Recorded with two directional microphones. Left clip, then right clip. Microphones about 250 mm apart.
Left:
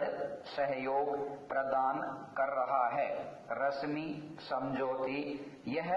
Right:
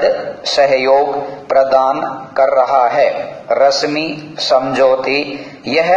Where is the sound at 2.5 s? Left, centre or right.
Right.